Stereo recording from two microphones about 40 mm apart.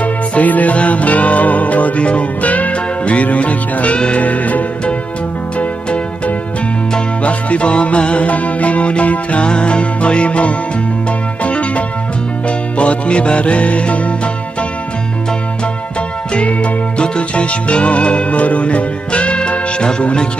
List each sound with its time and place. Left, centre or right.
0.0 s music: left
7.2 s music: left
17.0 s music: left